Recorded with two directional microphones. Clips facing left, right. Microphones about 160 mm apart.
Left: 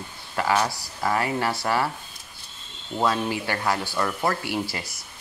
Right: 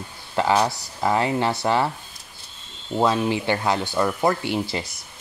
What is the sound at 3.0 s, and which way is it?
Speech, 20° right (ahead or behind).